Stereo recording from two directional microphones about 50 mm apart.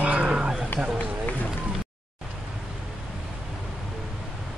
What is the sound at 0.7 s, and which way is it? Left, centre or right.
Speech, left.